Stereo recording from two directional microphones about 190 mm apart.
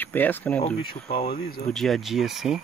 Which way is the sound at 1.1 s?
30° left (ahead or behind).